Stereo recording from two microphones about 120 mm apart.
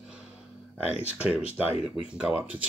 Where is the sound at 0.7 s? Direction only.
10° right (ahead or behind).